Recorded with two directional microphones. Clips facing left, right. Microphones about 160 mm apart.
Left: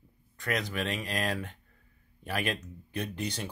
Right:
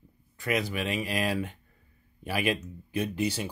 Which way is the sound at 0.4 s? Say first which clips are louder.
Right 3 dB; 5° right (ahead or behind).